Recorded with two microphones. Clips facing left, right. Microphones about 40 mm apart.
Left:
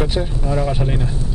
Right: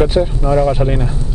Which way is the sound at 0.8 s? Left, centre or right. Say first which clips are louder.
Right 5 dB; centre.